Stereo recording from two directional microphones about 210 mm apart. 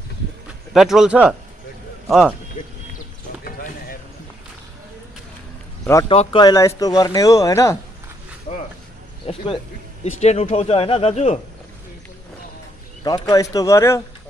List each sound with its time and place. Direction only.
0.7 s a man's voice: centre (ahead or behind)
2.6 s a sound: 40° left (ahead or behind)
6.0 s speech: 25° left (ahead or behind)
8.5 s a sound: 35° left (ahead or behind)
9.2 s speech: 25° left (ahead or behind)
13.0 s speech: 20° left (ahead or behind)